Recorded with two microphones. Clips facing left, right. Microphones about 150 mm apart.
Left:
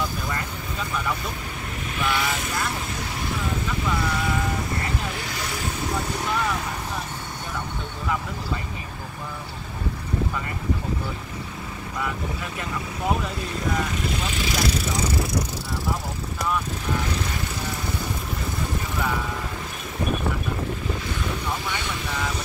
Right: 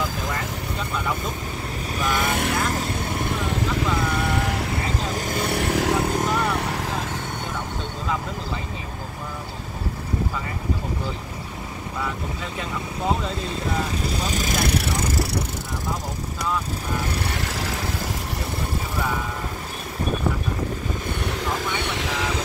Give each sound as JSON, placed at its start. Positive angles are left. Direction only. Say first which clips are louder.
{"t": 2.0, "sound": "speech", "louder": "right 2 dB", "side_deg": -45}
{"t": 2.7, "sound": "vehicle", "louder": "right 5 dB", "side_deg": -50}
{"t": 5.1, "sound": "vehicle", "louder": "right 7 dB", "side_deg": -50}
{"t": 6.0, "sound": "vehicle", "louder": "right 3 dB", "side_deg": -50}
{"t": 6.6, "sound": "vehicle", "louder": "right 4 dB", "side_deg": -85}
{"t": 14.2, "sound": "vehicle", "louder": "right 2 dB", "side_deg": -40}
{"t": 17.3, "sound": "vehicle", "louder": "right 2 dB", "side_deg": -90}
{"t": 21.2, "sound": "vehicle", "louder": "right 2 dB", "side_deg": -65}